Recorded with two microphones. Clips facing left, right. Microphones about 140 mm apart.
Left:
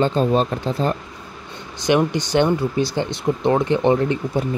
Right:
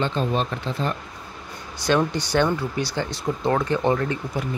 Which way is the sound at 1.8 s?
15° left (ahead or behind).